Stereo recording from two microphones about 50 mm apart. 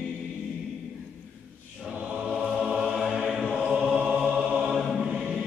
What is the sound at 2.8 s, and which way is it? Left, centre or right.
Music, centre.